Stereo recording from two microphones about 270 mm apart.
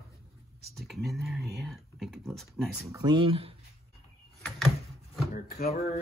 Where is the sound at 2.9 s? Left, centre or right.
Centre.